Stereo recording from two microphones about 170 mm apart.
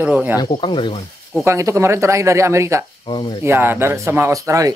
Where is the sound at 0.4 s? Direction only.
30° left (ahead or behind).